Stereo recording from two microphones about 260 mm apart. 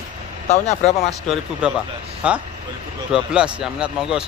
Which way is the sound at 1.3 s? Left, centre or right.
Centre.